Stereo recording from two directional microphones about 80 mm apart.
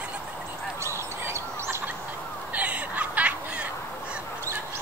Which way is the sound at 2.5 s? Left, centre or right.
Centre.